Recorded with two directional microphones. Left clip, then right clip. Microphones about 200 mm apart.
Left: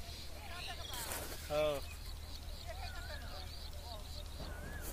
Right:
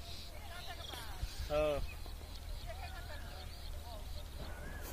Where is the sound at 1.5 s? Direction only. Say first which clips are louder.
Right 1 dB; 40° right (ahead or behind).